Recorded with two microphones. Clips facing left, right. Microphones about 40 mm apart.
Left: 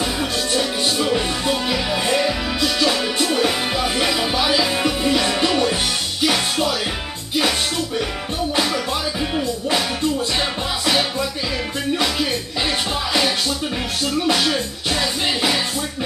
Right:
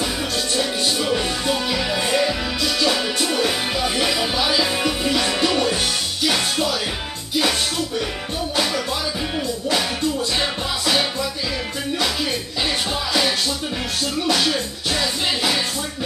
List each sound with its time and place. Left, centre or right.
1.0 s music: centre
9.8 s music: centre
14.2 s music: centre